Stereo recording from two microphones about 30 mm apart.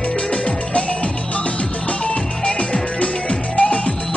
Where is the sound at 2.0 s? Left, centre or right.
Left.